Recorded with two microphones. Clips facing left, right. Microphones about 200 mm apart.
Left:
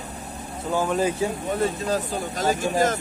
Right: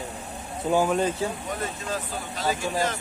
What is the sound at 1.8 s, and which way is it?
Speech, 40° left (ahead or behind).